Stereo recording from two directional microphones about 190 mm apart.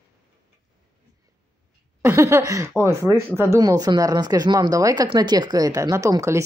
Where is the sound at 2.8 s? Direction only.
15° right (ahead or behind).